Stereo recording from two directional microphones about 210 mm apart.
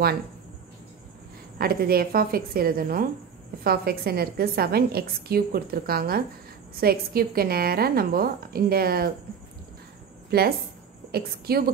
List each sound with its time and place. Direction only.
1.6 s a woman's voice: 45° right (ahead or behind)
10.3 s a woman's voice: 45° right (ahead or behind)